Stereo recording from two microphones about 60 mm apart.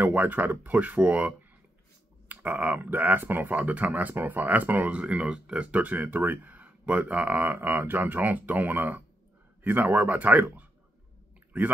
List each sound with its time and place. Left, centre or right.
0.0 s speech: right